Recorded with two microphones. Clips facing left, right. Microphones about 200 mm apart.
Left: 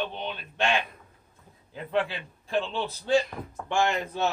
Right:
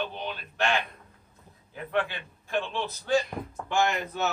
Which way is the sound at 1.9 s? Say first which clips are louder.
Left 2 dB; 30° left (ahead or behind).